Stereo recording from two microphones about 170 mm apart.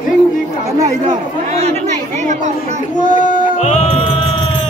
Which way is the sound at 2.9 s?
50° left (ahead or behind).